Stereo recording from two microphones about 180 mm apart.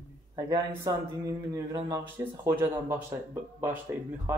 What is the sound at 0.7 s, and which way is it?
Speech, 15° right (ahead or behind).